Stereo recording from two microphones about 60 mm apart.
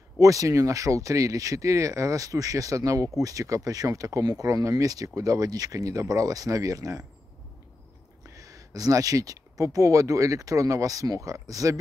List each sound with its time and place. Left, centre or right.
0.2 s speech: right
8.3 s speech: right